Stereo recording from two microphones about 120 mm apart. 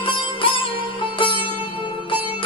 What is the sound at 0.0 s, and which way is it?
Music, 45° left (ahead or behind).